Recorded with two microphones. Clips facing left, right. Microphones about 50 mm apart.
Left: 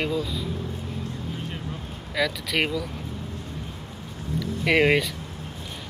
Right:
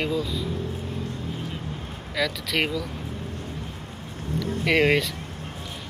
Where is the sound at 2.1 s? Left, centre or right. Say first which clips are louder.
Left 1 dB; centre.